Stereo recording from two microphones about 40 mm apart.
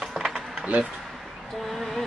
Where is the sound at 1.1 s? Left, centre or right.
Centre.